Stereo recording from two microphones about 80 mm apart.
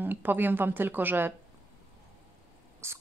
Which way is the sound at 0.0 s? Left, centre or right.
Right.